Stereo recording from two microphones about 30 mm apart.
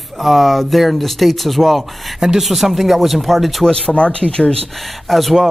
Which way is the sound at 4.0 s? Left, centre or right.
Left.